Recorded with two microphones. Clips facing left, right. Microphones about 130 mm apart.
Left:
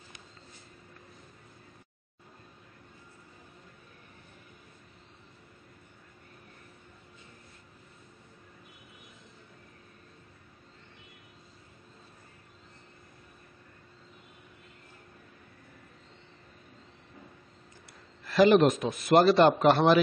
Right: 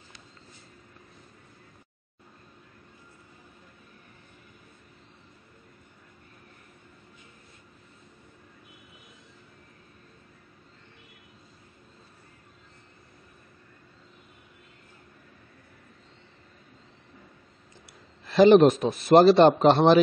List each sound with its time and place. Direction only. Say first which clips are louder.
18.2 s a man's voice: right 5 dB; 25° right (ahead or behind)